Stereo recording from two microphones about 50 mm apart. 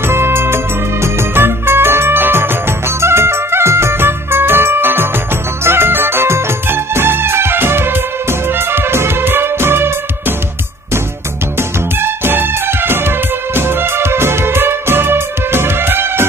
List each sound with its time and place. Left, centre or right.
0.1 s music: right
3.0 s music: right
12.0 s music: right